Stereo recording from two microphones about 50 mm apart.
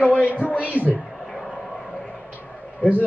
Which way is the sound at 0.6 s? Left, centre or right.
Right.